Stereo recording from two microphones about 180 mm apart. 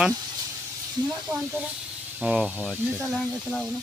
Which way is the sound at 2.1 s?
5° right (ahead or behind).